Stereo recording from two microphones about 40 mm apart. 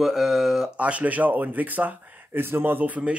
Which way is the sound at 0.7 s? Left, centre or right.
Right.